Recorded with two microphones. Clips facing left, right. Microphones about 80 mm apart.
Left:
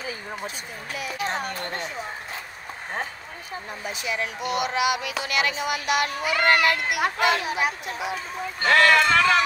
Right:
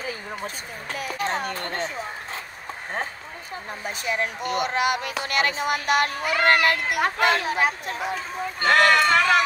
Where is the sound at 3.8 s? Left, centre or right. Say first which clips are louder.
Right 3 dB; right.